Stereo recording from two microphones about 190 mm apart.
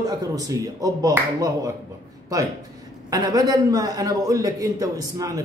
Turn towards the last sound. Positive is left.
turn(degrees=-20)  # may be behind; listen again after turning